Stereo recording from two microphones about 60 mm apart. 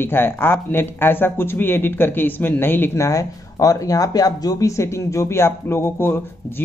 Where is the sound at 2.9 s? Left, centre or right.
Left.